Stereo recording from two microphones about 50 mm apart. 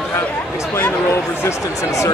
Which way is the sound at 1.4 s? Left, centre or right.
Left.